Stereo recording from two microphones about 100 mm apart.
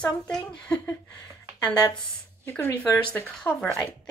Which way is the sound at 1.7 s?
40° left (ahead or behind).